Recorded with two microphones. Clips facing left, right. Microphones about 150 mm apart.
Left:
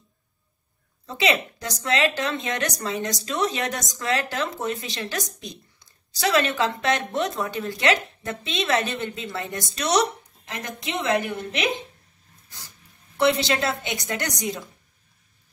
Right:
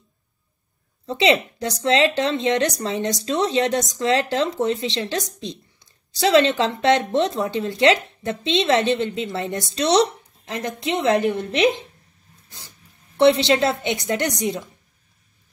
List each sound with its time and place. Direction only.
1.0 s speech: 25° right (ahead or behind)
13.2 s speech: 25° right (ahead or behind)